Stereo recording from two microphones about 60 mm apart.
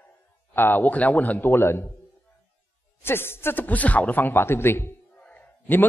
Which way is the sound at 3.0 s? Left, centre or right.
Left.